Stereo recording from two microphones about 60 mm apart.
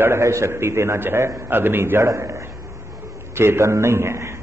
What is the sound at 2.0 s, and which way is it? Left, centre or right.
A man's voice, right.